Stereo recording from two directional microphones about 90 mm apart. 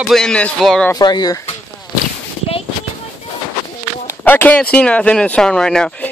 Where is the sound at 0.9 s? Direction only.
50° left (ahead or behind).